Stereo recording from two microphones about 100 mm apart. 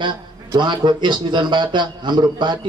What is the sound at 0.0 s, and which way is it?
A man's voice, 50° right (ahead or behind).